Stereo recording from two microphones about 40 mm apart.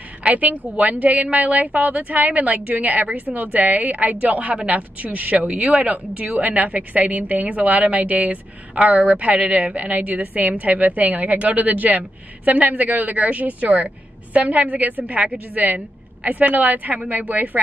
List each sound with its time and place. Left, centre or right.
0.3 s a woman's voice: right